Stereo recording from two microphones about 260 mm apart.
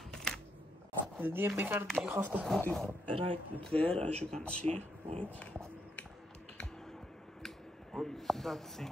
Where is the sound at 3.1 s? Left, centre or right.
Right.